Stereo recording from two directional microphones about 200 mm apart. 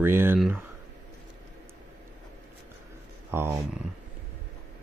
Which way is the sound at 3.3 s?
10° right (ahead or behind).